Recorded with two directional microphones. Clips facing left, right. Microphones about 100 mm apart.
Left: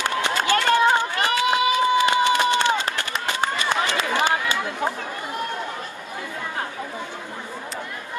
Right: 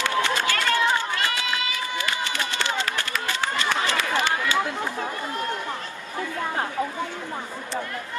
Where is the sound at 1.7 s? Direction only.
20° left (ahead or behind).